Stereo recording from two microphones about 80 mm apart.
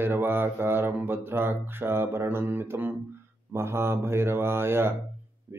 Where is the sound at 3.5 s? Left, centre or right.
Right.